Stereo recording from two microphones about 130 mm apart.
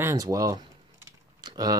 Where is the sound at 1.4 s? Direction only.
30° right (ahead or behind).